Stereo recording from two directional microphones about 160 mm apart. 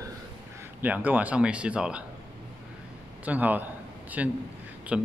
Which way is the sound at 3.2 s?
10° right (ahead or behind).